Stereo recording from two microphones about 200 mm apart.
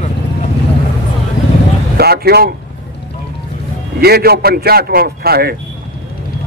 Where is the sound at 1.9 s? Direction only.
50° right (ahead or behind).